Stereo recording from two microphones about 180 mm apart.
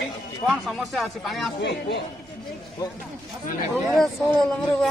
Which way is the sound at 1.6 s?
75° left (ahead or behind).